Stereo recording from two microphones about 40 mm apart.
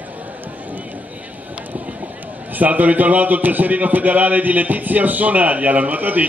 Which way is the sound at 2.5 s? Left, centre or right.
Right.